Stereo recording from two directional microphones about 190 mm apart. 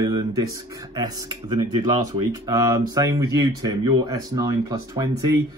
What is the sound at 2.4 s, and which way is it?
Speech, 15° right (ahead or behind).